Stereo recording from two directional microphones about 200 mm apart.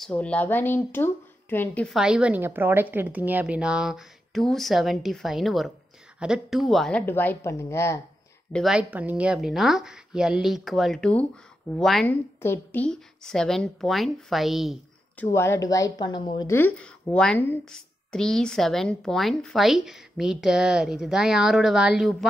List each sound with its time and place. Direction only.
0.0 s speech: 5° left (ahead or behind)
8.5 s speech: 5° right (ahead or behind)
15.2 s speech: 10° left (ahead or behind)
16.5 s speech: 5° left (ahead or behind)